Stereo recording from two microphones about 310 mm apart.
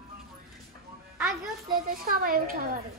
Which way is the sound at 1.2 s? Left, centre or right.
Centre.